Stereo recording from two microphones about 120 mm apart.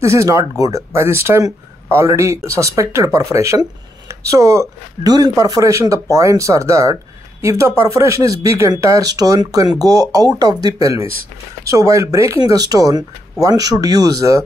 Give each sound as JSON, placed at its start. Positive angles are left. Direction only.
{"t": 0.0, "sound": "speech", "side_deg": -25}